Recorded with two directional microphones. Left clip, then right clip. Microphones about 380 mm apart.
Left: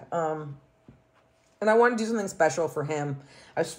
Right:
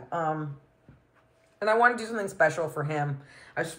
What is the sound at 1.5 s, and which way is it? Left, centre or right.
Speech, left.